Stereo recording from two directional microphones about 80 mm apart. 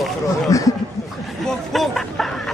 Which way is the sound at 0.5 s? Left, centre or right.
Left.